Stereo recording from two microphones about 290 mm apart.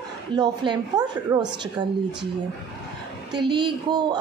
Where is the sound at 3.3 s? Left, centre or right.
Centre.